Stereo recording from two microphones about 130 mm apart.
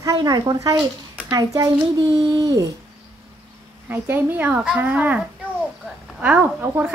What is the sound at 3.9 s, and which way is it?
A child's voice, 15° right (ahead or behind).